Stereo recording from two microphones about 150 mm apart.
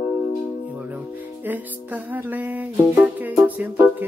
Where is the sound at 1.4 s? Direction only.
10° right (ahead or behind).